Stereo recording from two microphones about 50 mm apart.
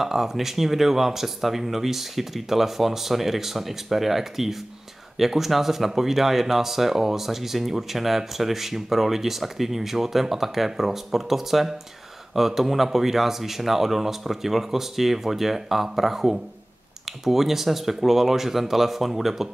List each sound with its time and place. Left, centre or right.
0.0 s speech: centre